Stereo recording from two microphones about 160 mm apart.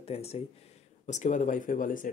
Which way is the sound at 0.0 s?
40° left (ahead or behind).